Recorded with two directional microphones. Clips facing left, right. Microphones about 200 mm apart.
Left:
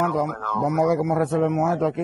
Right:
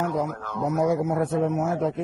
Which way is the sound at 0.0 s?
80° left.